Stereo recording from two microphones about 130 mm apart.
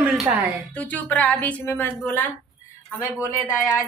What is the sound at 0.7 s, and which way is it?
A woman's voice, 10° left (ahead or behind).